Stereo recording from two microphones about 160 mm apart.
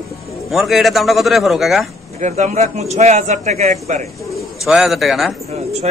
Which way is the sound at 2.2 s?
45° right (ahead or behind).